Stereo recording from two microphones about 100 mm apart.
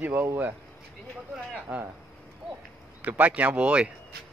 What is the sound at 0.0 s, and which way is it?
Speech, 15° right (ahead or behind).